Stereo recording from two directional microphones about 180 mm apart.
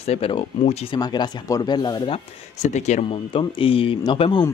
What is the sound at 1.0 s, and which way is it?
Speech, 20° left (ahead or behind).